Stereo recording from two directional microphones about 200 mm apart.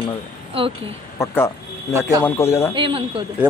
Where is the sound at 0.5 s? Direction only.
30° right (ahead or behind).